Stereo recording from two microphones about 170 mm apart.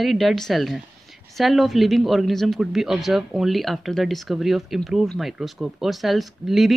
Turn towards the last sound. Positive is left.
turn(degrees=0)  # may be behind; listen again after turning